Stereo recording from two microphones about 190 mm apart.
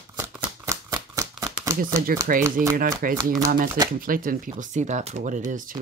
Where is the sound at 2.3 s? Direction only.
45° right (ahead or behind).